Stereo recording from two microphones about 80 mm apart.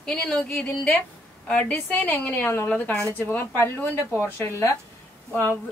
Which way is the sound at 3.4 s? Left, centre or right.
Left.